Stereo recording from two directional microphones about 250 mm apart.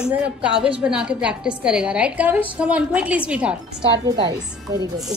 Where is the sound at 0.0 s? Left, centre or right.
Centre.